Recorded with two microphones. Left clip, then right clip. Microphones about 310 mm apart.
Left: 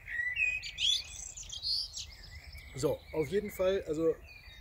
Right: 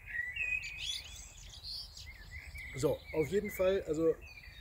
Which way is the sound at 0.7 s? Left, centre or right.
Left.